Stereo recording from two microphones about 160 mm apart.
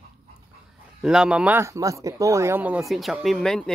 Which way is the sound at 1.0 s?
5° right (ahead or behind).